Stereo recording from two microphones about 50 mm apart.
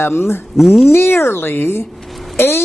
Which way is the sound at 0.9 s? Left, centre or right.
Left.